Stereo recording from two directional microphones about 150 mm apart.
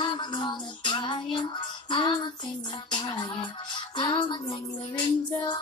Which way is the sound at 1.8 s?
35° left (ahead or behind).